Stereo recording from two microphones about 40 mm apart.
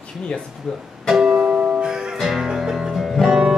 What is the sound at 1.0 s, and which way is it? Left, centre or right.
Music, centre.